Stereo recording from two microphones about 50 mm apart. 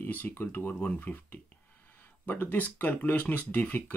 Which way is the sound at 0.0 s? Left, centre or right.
Left.